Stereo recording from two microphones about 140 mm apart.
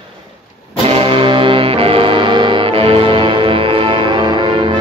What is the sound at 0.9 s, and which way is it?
Brass instrument, 40° right (ahead or behind).